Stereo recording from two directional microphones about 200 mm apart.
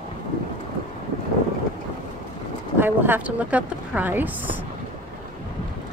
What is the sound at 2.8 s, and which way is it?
A woman's voice, 10° right (ahead or behind).